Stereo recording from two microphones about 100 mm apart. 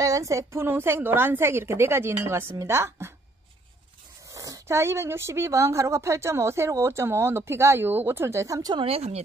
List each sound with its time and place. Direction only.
0.0 s a woman's voice: 35° right (ahead or behind)
4.3 s a woman's voice: 35° right (ahead or behind)
8.7 s speech: 80° right